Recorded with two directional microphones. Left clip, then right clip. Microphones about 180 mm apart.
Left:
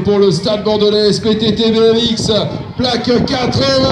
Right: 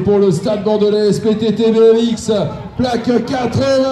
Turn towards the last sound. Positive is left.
turn(degrees=-45)  # may be behind; listen again after turning